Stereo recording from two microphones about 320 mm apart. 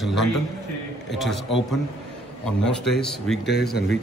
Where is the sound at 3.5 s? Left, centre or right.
Left.